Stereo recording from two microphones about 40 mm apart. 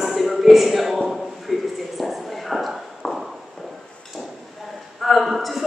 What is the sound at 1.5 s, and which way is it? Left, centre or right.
Speech, centre.